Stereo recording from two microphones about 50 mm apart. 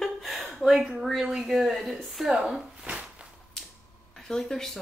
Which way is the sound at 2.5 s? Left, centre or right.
Right.